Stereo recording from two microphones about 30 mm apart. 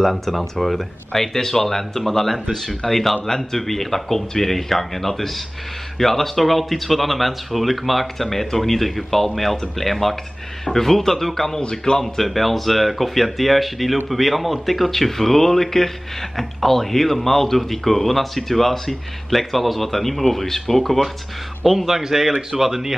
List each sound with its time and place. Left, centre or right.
0.1 s speech: centre
11.6 s speech: left
12.2 s speech: centre
21.6 s a man's voice: centre